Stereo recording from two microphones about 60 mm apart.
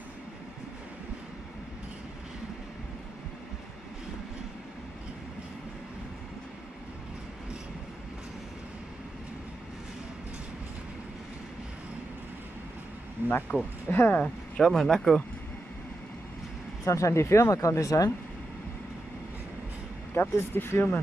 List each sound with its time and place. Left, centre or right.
13.5 s speech: left
14.2 s speech: centre
16.8 s speech: left
20.2 s speech: left